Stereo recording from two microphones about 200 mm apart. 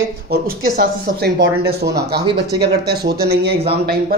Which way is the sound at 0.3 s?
50° right (ahead or behind).